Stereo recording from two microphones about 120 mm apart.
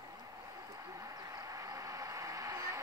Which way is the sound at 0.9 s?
30° right (ahead or behind).